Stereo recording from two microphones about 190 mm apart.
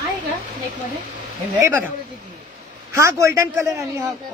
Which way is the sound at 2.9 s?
15° right (ahead or behind).